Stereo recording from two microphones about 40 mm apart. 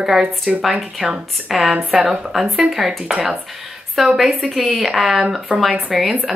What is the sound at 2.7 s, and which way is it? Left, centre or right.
A woman's voice, centre.